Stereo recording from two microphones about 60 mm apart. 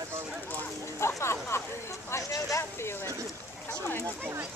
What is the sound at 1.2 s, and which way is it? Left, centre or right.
Speech, left.